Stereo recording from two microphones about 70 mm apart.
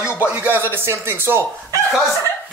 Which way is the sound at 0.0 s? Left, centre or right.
Left.